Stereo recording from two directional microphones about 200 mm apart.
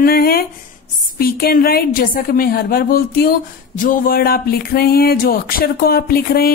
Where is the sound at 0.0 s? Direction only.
50° left (ahead or behind).